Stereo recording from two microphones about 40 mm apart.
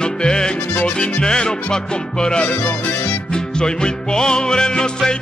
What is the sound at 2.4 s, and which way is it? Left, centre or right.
Speech, left.